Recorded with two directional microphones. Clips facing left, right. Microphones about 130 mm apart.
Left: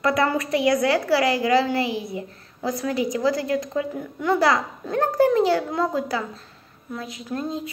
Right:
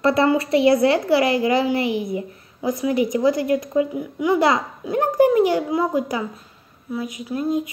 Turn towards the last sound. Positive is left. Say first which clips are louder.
# right 5 dB
turn(degrees=-10)  # may be behind; listen again after turning